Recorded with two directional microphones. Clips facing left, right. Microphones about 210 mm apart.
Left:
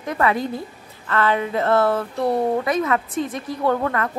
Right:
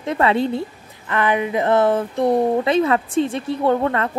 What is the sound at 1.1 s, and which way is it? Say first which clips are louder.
Speech: right 1 dB; 15° right (ahead or behind).